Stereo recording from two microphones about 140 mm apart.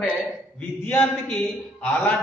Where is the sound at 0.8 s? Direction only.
15° left (ahead or behind).